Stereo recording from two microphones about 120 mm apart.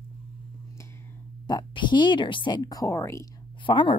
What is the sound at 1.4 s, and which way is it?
Speech, 40° left (ahead or behind).